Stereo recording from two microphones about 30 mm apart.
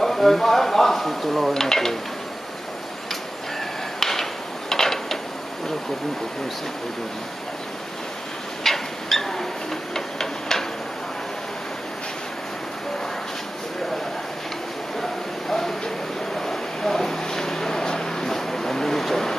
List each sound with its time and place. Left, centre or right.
0.0 s speech: centre
1.5 s speech: centre
4.0 s a sound: centre
8.6 s a sound: centre
9.9 s tick-tock: centre
16.3 s vehicle: centre